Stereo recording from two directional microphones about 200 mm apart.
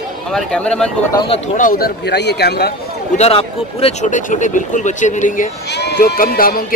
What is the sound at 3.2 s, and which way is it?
Speech, 30° left (ahead or behind).